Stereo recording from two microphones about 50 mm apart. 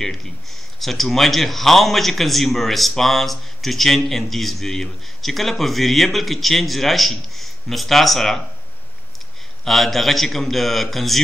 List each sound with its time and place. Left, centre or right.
0.0 s speech: centre
9.7 s speech: centre